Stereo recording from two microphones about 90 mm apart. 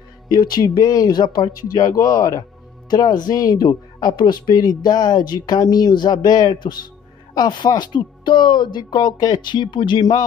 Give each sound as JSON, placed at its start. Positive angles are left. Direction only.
{"t": 0.3, "sound": "speech", "side_deg": 50}